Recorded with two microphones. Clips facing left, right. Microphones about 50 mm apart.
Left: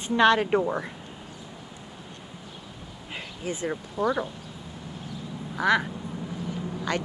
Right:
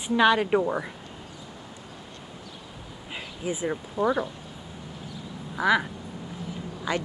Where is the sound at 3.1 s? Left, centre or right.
Centre.